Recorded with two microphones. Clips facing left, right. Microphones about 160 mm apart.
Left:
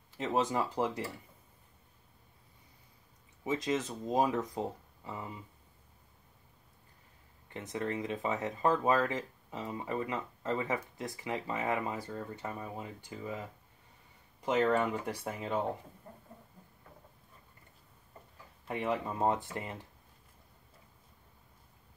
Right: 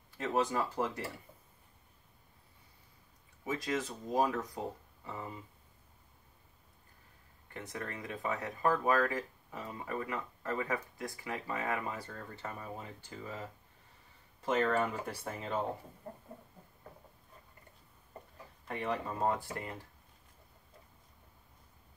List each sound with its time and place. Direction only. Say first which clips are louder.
0.2 s speech: left 1 dB; 20° left (ahead or behind)
3.4 s speech: left 3 dB; 20° left (ahead or behind)
7.4 s speech: left 6 dB; 20° left (ahead or behind)
14.4 s speech: left 2 dB; 15° left (ahead or behind)
18.7 s speech: left 3 dB; 20° left (ahead or behind)